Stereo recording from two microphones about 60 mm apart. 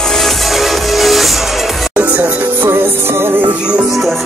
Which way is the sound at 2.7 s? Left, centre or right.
Right.